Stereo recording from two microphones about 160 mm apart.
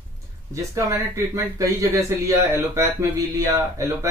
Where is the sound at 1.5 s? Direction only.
20° right (ahead or behind).